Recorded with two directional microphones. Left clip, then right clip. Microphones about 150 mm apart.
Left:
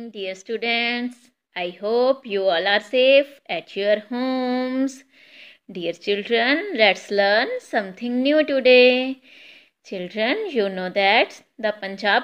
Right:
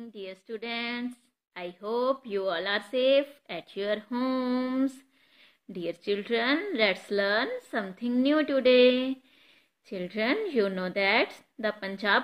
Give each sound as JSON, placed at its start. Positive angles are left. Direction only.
{"t": 0.1, "sound": "a woman's voice", "side_deg": 15}